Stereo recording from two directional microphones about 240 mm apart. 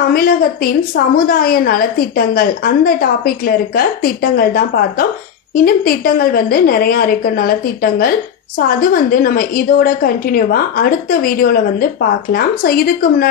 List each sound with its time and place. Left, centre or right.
0.1 s a woman's voice: left